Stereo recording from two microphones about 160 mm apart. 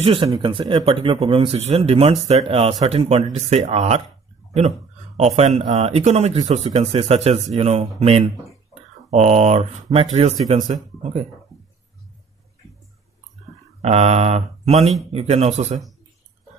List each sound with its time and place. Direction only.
0.0 s speech: 30° right (ahead or behind)
12.6 s a sound: centre (ahead or behind)
13.7 s speech: 40° right (ahead or behind)